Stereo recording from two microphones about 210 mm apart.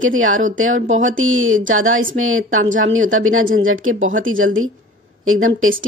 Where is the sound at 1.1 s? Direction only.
70° right (ahead or behind).